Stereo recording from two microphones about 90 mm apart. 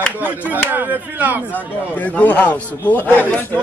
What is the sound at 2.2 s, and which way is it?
A man's voice, 15° left (ahead or behind).